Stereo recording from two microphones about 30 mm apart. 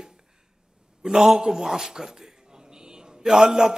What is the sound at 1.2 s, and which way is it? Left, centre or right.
Speech, centre.